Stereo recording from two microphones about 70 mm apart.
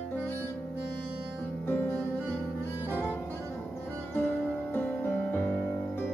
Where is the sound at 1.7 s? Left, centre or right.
Left.